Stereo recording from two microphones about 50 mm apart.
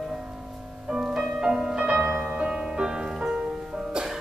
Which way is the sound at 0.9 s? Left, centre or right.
Centre.